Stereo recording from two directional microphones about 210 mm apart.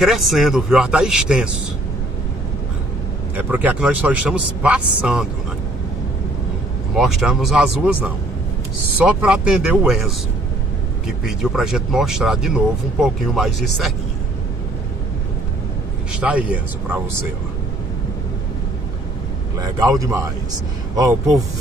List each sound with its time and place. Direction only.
0.0 s speech: centre (ahead or behind)
3.3 s a man's voice: 10° right (ahead or behind)
7.0 s speech: centre (ahead or behind)
16.2 s a man's voice: 5° right (ahead or behind)
19.6 s a man's voice: 15° right (ahead or behind)